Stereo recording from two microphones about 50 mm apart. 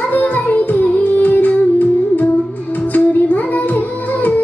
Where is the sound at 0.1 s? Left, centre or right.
Left.